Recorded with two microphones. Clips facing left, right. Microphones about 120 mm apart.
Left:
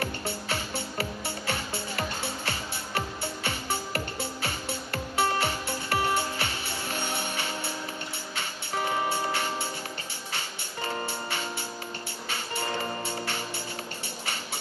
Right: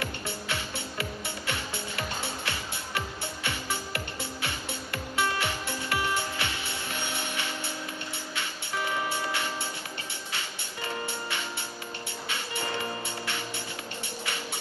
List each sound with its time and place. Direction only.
0.0 s music: 35° left (ahead or behind)
8.7 s music: 35° left (ahead or behind)